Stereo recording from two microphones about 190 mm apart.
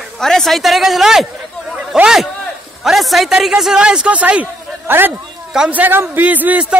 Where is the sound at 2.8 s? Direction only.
Centre (ahead or behind).